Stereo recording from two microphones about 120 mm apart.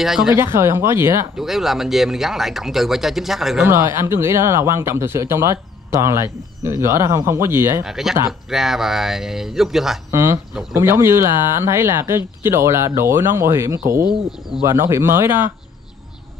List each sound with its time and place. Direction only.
0.0 s speech: centre (ahead or behind)
0.3 s speech: 20° right (ahead or behind)
1.3 s speech: centre (ahead or behind)
3.6 s speech: 20° right (ahead or behind)
7.8 s speech: 5° right (ahead or behind)
10.1 s speech: 25° right (ahead or behind)